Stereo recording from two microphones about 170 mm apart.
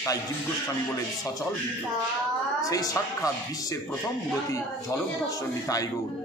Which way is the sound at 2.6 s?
20° left (ahead or behind).